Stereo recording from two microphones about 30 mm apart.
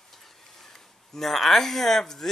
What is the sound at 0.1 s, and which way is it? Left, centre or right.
Speech, centre.